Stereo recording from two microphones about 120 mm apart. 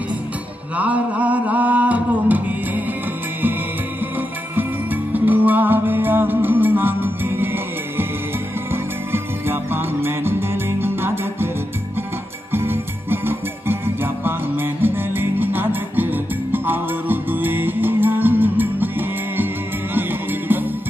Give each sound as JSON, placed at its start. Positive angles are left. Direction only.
{"t": 0.7, "sound": "music", "side_deg": -10}
{"t": 5.1, "sound": "music", "side_deg": -15}
{"t": 12.5, "sound": "music", "side_deg": -20}